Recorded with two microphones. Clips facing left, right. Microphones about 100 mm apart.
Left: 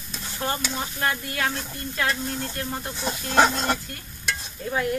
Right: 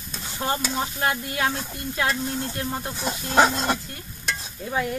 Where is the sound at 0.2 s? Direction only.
10° right (ahead or behind).